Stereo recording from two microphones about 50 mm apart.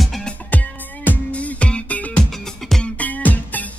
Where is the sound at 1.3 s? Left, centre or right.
Left.